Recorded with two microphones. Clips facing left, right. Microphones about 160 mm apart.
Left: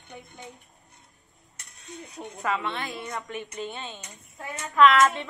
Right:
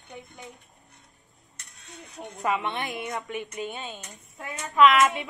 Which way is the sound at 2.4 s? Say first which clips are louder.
Right 2 dB; 15° right (ahead or behind).